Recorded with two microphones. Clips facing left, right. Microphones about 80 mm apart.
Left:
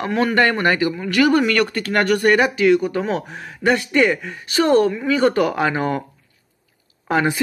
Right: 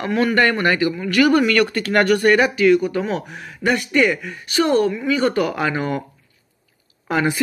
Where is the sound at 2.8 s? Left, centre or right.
Left.